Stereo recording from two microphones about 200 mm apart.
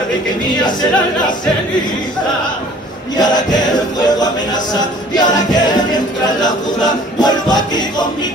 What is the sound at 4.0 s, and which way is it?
Music, 20° left (ahead or behind).